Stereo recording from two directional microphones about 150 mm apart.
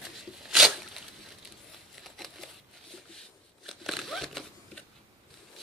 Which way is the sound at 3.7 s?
Centre (ahead or behind).